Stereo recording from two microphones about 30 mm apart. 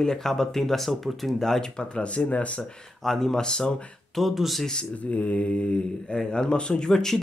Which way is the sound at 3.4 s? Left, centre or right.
Left.